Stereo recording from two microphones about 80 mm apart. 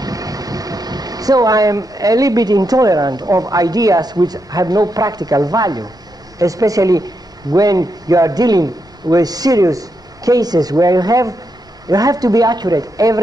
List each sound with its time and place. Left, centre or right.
0.0 s a man's voice: right